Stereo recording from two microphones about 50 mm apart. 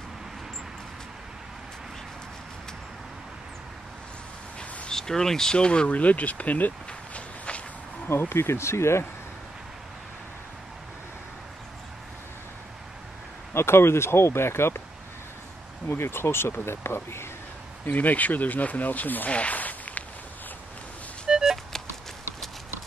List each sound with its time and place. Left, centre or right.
4.6 s a sound: centre
5.9 s speech: left
6.9 s a sound: left
8.1 s speech: left
13.5 s speech: left
15.9 s speech: left
17.8 s speech: left
19.3 s a sound: left
21.3 s music: centre